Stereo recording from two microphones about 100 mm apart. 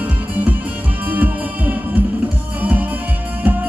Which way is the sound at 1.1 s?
15° right (ahead or behind).